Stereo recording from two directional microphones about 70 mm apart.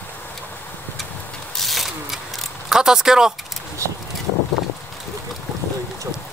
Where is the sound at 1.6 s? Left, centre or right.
Centre.